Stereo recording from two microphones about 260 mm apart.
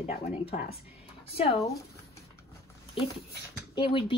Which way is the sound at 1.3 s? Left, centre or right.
Left.